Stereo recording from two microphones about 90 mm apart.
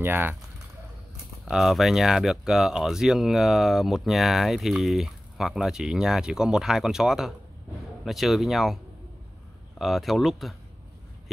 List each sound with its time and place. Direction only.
0.0 s speech: 25° right (ahead or behind)
1.5 s speech: centre (ahead or behind)
9.8 s speech: centre (ahead or behind)